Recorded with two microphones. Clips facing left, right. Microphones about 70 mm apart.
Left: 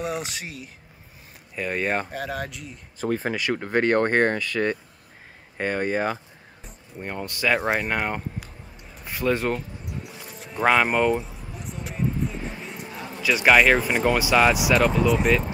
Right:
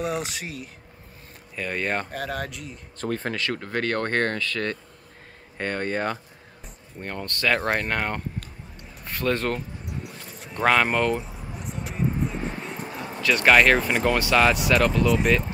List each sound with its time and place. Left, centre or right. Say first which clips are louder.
0.0 s speech: right 1 dB; centre
10.1 s a sound: left 1 dB; centre
11.5 s music: right 1 dB; centre
12.3 s speech: right 3 dB; centre